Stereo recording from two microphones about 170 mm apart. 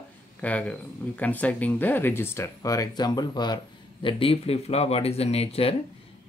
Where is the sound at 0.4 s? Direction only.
10° left (ahead or behind).